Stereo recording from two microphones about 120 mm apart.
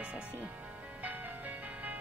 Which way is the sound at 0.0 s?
10° right (ahead or behind).